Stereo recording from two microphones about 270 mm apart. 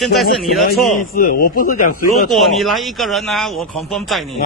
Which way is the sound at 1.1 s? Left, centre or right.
Left.